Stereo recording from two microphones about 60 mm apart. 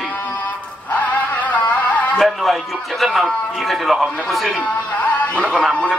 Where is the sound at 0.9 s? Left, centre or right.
Left.